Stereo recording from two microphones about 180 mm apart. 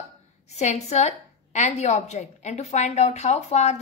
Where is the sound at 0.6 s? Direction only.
40° left (ahead or behind).